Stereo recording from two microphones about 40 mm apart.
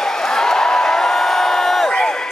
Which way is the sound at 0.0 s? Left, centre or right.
Centre.